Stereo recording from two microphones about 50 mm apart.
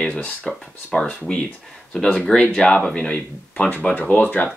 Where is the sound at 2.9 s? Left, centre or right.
Left.